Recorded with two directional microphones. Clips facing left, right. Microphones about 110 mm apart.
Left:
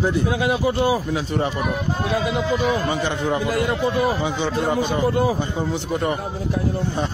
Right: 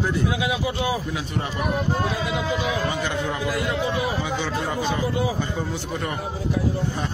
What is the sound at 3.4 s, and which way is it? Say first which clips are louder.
Speech: left 4 dB; 50° left (ahead or behind).